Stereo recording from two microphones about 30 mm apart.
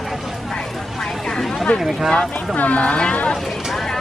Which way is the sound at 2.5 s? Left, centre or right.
Left.